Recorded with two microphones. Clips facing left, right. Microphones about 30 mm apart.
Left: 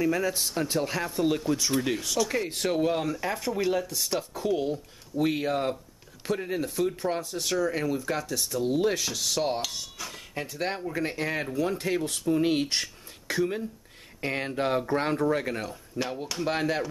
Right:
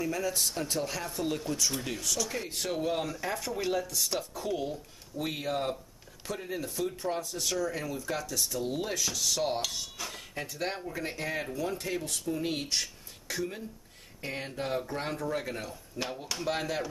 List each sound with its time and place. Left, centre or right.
0.0 s speech: centre
8.8 s speech: left
9.6 s speech: centre
10.3 s speech: centre
11.8 s speech: left